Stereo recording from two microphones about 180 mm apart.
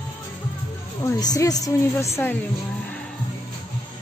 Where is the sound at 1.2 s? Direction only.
20° left (ahead or behind).